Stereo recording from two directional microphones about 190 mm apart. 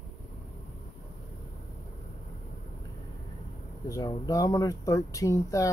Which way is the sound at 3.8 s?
20° left (ahead or behind).